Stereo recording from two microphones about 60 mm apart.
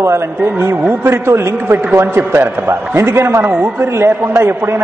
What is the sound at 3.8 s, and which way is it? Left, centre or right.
A man's voice, right.